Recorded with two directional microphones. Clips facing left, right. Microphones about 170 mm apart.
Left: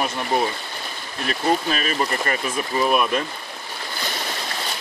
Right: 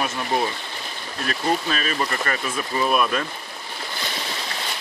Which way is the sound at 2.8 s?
5° left (ahead or behind).